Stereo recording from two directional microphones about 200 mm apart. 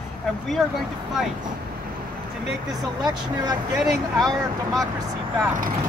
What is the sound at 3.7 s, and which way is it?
Speech, centre (ahead or behind).